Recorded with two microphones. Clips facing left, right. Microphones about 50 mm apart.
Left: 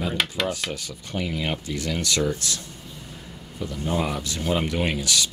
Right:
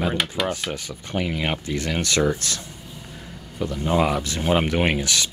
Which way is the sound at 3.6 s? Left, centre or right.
Right.